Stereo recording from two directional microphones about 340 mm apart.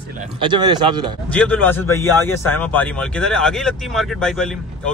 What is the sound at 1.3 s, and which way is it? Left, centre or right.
A man's voice, centre.